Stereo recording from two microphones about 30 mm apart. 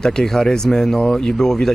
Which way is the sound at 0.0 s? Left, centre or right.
Left.